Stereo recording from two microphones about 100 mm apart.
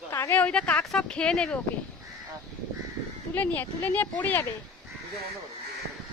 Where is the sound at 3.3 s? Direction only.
15° left (ahead or behind).